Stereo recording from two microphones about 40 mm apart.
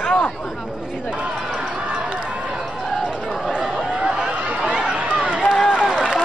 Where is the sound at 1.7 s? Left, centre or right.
Right.